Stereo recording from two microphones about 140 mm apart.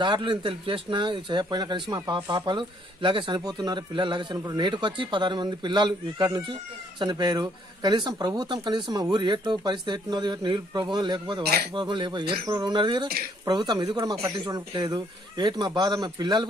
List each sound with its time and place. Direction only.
0.0 s a man's voice: 35° right (ahead or behind)